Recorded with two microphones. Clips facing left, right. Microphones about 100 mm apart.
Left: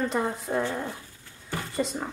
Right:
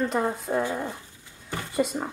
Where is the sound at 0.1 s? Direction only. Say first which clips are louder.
Right 2 dB; centre (ahead or behind).